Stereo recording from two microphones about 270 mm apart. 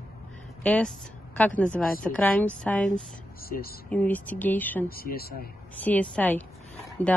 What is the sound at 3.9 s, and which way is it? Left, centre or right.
Speech, centre.